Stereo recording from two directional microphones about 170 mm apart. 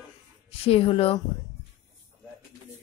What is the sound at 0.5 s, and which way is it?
Speech, 35° left (ahead or behind).